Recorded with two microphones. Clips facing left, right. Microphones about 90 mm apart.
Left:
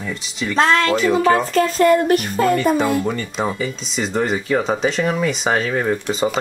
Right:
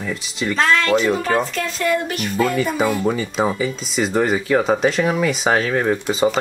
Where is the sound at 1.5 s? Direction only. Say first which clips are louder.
Left 7 dB; 45° left (ahead or behind).